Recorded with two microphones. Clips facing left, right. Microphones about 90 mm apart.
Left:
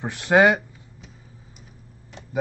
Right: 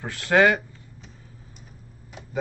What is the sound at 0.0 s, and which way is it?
Speech, 20° left (ahead or behind).